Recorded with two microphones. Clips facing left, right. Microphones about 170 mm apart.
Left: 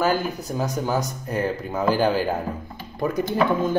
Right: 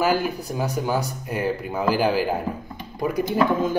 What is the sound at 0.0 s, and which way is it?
A man's voice, 10° right (ahead or behind).